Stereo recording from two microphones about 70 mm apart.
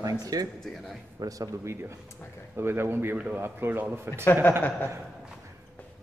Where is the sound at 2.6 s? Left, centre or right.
Right.